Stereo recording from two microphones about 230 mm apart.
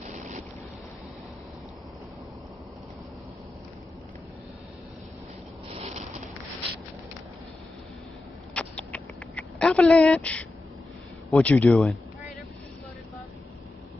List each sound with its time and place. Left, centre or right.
0.0 s boat: right
5.7 s a sound: right
8.5 s rodents: centre
11.3 s speech: centre